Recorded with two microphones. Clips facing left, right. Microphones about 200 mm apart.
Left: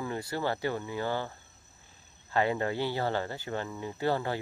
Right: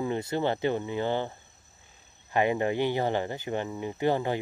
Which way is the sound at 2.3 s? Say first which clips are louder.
Right 3 dB; 15° right (ahead or behind).